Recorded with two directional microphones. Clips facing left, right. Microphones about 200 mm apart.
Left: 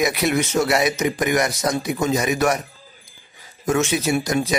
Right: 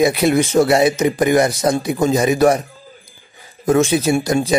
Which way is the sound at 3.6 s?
35° right (ahead or behind).